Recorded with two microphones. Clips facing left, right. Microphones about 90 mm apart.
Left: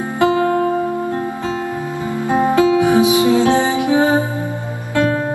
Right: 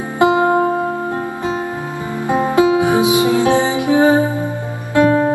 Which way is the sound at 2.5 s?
20° right (ahead or behind).